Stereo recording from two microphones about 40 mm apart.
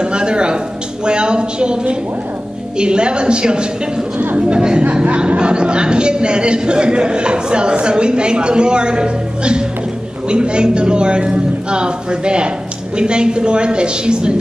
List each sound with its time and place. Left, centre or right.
0.0 s a woman's voice: right
5.0 s a woman's voice: right